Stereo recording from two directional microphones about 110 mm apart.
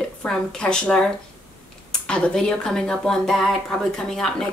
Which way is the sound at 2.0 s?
10° left (ahead or behind).